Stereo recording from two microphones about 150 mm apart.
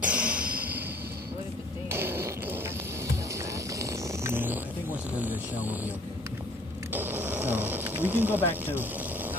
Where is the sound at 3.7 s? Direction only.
20° right (ahead or behind).